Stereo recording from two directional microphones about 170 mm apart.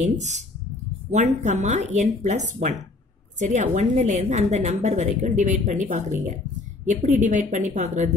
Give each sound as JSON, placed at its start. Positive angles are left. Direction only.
{"t": 0.0, "sound": "a woman's voice", "side_deg": -45}